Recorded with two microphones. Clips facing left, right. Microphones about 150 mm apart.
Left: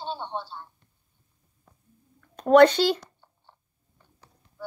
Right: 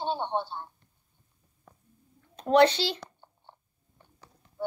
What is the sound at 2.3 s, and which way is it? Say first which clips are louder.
Speech: left 5 dB; 50° left (ahead or behind).